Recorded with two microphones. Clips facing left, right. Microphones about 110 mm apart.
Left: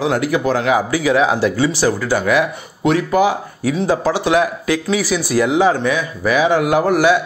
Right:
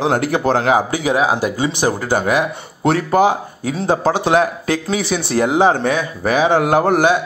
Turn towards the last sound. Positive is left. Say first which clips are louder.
# right 1 dB
turn(degrees=-40)  # may be behind; listen again after turning